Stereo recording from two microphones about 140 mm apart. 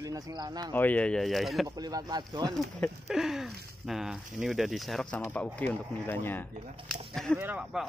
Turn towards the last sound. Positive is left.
turn(degrees=-5)  # may be behind; listen again after turning